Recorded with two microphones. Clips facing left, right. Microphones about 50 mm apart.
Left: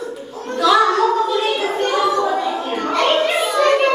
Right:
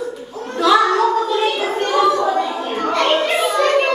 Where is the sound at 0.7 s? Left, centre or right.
Centre.